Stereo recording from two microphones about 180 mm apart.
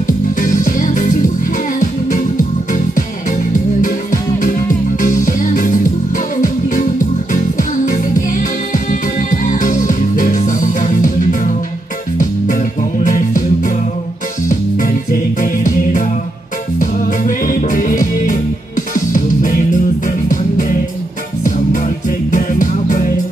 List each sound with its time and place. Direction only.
0.0 s music: 45° left (ahead or behind)
3.8 s music: 45° left (ahead or behind)